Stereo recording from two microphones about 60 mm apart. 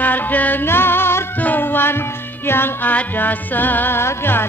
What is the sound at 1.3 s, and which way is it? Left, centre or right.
Music, left.